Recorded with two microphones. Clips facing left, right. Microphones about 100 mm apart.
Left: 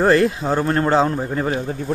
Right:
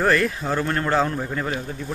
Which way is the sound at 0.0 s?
25° left (ahead or behind).